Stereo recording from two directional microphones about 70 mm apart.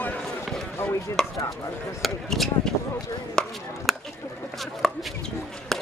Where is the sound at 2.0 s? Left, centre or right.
Centre.